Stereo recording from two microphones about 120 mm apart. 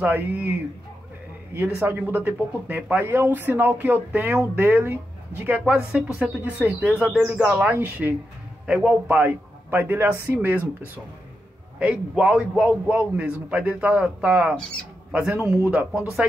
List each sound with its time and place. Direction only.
0.0 s speech: 15° right (ahead or behind)
1.5 s a man's voice: 20° right (ahead or behind)
11.8 s speech: 10° right (ahead or behind)